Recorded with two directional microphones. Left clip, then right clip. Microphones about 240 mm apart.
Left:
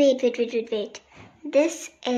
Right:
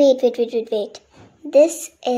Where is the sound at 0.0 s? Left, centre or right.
Centre.